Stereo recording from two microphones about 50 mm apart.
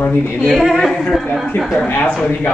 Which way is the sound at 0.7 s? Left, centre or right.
Centre.